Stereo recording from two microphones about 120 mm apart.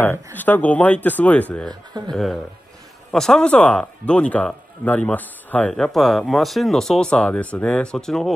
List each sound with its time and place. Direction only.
0.0 s a man's voice: 15° left (ahead or behind)
5.7 s speech: centre (ahead or behind)